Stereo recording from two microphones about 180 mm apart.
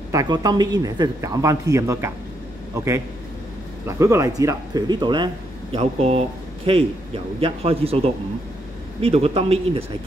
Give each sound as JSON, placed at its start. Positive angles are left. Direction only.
{"t": 0.1, "sound": "a man's voice", "side_deg": -20}
{"t": 9.0, "sound": "speech", "side_deg": -35}